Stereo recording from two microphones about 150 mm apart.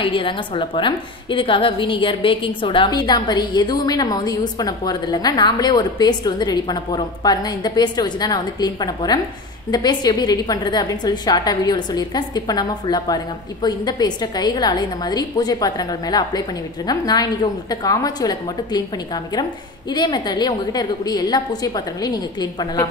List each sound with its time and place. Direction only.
0.0 s a woman's voice: 35° left (ahead or behind)